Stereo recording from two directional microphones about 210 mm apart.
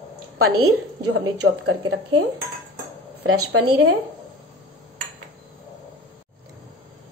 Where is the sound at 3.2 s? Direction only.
90° right.